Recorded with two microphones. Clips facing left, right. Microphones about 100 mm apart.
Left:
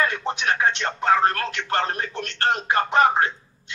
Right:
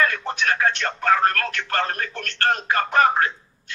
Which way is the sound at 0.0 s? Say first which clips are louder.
Right 1 dB; 25° left (ahead or behind).